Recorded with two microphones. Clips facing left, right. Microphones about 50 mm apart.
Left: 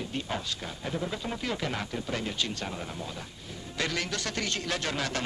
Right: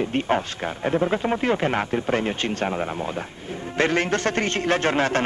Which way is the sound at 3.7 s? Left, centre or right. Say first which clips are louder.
Right 11 dB; right.